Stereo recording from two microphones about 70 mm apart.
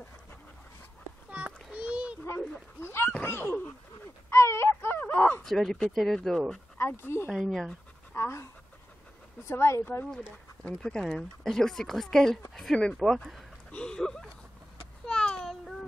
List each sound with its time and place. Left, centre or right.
1.3 s a sound: centre
2.8 s a sound: left
4.3 s wail: left
5.4 s speech: centre
6.8 s speech: left
7.2 s speech: centre
8.1 s speech: left
9.5 s speech: left
10.6 s speech: centre
13.1 s speech: centre
13.7 s a sound: centre